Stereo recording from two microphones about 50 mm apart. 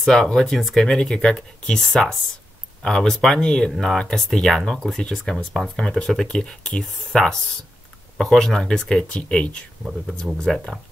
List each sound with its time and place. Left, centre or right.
0.1 s speech: centre
10.3 s speech: centre